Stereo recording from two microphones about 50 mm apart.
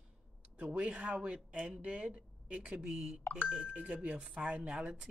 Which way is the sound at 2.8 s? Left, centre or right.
Centre.